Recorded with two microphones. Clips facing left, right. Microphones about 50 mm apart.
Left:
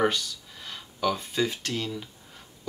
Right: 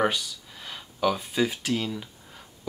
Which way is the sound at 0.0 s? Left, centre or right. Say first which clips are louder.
Even; centre.